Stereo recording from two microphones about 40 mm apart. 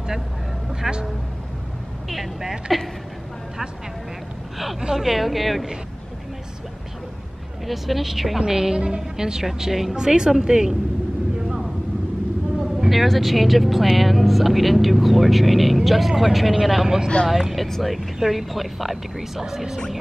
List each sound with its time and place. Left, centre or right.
0.7 s vehicle: centre
2.0 s speech: centre
4.6 s speech: centre
7.6 s a woman's voice: centre
8.7 s a woman's voice: right
11.3 s vehicle: centre
12.9 s speech: centre
17.6 s speech: centre
17.9 s a woman's voice: centre